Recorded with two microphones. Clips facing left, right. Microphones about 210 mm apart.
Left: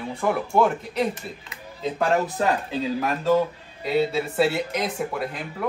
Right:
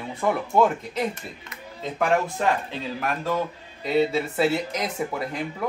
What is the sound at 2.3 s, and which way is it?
Speech, 35° left (ahead or behind).